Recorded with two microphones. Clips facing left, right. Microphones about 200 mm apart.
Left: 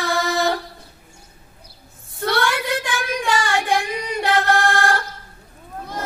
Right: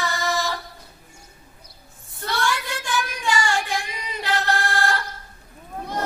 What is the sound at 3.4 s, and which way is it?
Music, 55° left (ahead or behind).